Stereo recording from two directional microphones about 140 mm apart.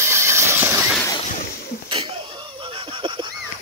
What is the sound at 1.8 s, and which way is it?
Wheeze, 40° right (ahead or behind).